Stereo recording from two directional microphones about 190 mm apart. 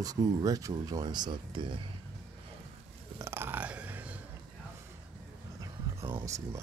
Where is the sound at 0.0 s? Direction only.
20° right (ahead or behind).